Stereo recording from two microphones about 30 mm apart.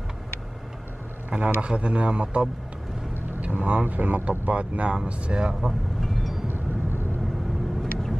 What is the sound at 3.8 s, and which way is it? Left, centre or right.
Speech, right.